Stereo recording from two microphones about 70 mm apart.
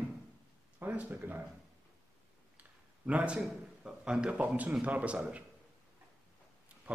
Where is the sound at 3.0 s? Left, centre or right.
Centre.